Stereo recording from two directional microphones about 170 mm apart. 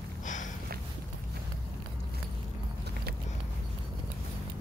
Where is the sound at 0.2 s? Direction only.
45° left (ahead or behind).